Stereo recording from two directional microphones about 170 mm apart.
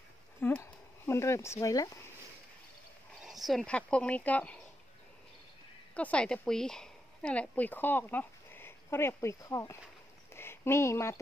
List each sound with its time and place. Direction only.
0.4 s speech: 15° left (ahead or behind)
3.3 s speech: centre (ahead or behind)
5.9 s speech: 5° left (ahead or behind)
10.3 s a sound: 15° left (ahead or behind)